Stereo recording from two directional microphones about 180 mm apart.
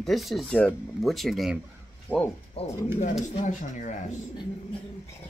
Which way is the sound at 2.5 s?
40° left (ahead or behind).